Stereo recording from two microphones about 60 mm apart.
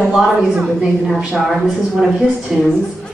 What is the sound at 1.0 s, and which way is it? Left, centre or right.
A woman's voice, centre.